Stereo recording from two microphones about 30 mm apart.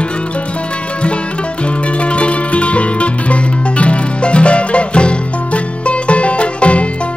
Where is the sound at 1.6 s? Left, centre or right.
Left.